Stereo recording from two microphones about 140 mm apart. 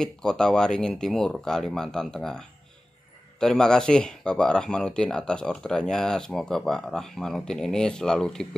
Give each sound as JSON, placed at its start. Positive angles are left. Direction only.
{"t": 0.0, "sound": "speech", "side_deg": 5}